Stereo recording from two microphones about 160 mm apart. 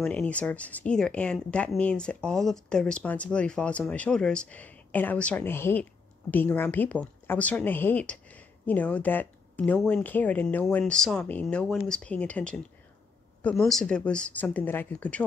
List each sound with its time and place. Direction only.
0.0 s a woman's voice: 10° left (ahead or behind)